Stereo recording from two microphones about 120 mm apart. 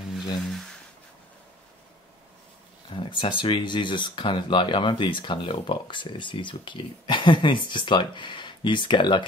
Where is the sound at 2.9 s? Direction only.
45° left (ahead or behind).